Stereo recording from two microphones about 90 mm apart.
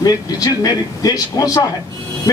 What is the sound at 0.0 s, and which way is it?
A man's voice, 45° left (ahead or behind).